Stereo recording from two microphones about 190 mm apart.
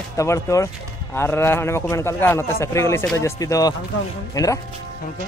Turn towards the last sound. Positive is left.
turn(degrees=15)  # may be behind; listen again after turning